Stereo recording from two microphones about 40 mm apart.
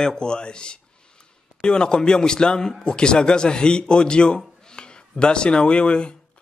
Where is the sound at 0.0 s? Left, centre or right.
Centre.